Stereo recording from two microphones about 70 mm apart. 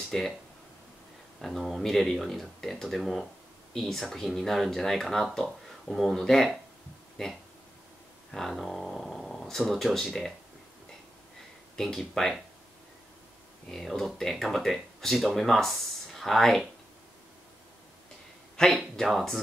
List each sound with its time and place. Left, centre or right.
0.1 s speech: centre
1.4 s speech: centre
11.7 s speech: centre
13.7 s speech: centre
18.6 s speech: centre